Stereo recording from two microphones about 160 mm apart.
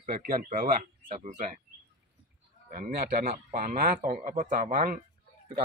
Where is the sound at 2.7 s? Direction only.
65° right (ahead or behind).